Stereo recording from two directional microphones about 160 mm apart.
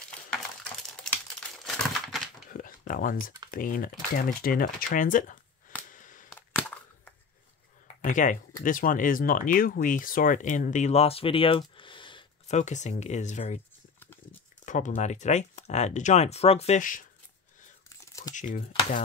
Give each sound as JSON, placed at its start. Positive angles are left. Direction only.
{"t": 1.6, "sound": "crumpling", "side_deg": 0}
{"t": 2.5, "sound": "computer keyboard", "side_deg": 60}
{"t": 3.5, "sound": "speech", "side_deg": 60}
{"t": 5.9, "sound": "a sound", "side_deg": 55}
{"t": 8.0, "sound": "speech", "side_deg": 50}
{"t": 11.7, "sound": "a sound", "side_deg": 30}
{"t": 12.4, "sound": "speech", "side_deg": 45}
{"t": 14.6, "sound": "a sound", "side_deg": 50}
{"t": 15.0, "sound": "speech", "side_deg": 45}
{"t": 17.8, "sound": "crumpling", "side_deg": 20}
{"t": 18.3, "sound": "speech", "side_deg": 50}